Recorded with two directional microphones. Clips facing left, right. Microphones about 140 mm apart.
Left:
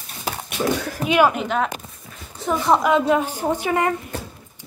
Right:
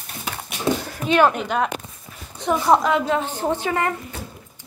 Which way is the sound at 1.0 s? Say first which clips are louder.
Even; 10° left (ahead or behind).